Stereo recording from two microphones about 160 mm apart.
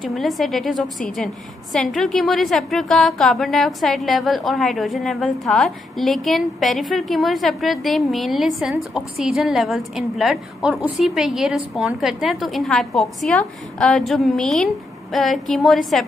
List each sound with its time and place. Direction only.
0.0 s a woman's voice: centre (ahead or behind)